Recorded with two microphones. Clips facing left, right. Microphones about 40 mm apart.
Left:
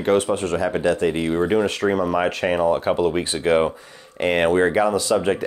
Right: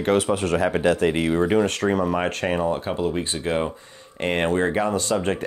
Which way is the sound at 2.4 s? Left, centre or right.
Centre.